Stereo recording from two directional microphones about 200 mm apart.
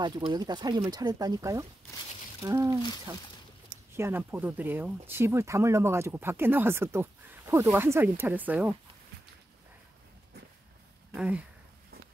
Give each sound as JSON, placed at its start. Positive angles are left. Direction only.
{"t": 0.3, "sound": "speech", "side_deg": -20}
{"t": 3.9, "sound": "speech", "side_deg": -10}
{"t": 11.1, "sound": "speech", "side_deg": -5}